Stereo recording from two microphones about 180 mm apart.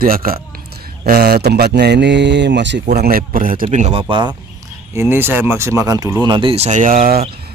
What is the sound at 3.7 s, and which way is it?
Speech, 35° right (ahead or behind).